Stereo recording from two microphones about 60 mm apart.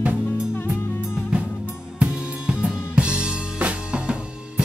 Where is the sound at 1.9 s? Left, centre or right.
Centre.